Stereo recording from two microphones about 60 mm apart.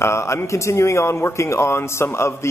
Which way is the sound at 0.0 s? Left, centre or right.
Left.